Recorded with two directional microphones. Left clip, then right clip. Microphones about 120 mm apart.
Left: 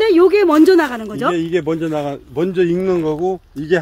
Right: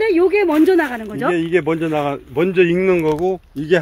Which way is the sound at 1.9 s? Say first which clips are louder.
Right 2 dB; 40° right (ahead or behind).